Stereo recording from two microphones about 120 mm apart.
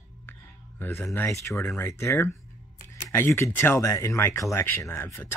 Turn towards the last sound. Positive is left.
turn(degrees=20)  # may be behind; listen again after turning